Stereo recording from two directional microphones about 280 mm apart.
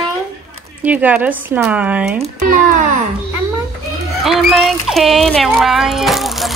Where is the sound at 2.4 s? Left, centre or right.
Right.